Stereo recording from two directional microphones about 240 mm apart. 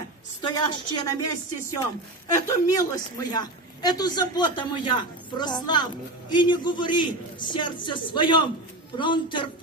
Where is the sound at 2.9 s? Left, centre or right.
Centre.